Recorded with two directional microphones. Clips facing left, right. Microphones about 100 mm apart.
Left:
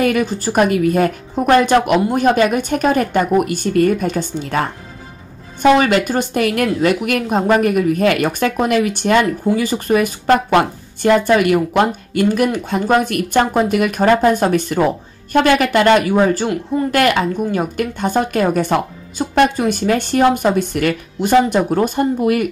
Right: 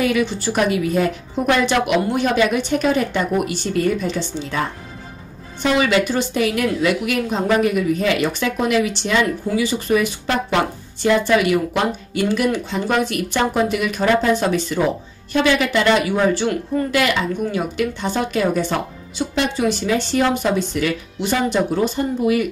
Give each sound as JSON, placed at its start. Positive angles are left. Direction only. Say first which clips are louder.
{"t": 0.0, "sound": "a woman's voice", "louder": "left 3 dB", "side_deg": 45}